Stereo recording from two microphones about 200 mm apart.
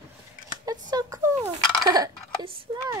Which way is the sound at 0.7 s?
20° right (ahead or behind).